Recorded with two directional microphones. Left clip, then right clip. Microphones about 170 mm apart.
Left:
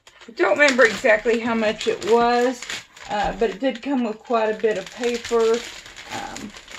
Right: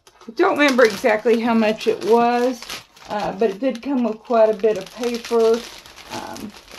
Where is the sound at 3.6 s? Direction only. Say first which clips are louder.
Right 2 dB; 35° right (ahead or behind).